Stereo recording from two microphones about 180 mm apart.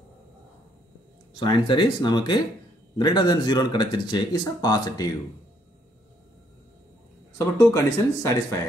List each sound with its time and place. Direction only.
1.3 s speech: 25° left (ahead or behind)
7.3 s speech: 20° left (ahead or behind)